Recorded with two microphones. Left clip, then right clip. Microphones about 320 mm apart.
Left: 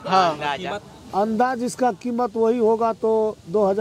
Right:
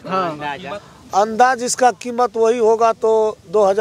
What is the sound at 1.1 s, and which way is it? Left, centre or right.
Speech, right.